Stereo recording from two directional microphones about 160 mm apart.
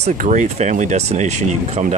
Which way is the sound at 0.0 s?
50° right (ahead or behind).